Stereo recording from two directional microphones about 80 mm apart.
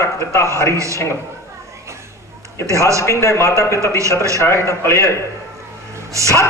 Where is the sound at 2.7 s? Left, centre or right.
Right.